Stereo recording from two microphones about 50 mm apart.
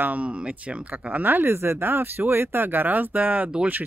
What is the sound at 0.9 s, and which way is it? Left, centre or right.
Speech, right.